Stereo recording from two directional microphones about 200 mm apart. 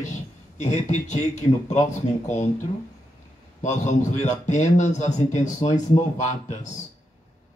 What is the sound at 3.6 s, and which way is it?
A man's voice, 35° left (ahead or behind).